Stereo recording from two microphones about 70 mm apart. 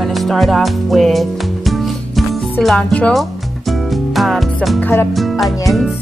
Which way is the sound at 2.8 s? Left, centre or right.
Centre.